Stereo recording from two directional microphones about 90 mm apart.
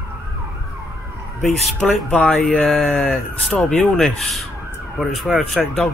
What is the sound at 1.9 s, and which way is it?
Speech, 15° left (ahead or behind).